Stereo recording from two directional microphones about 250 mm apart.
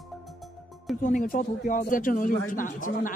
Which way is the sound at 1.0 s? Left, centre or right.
Left.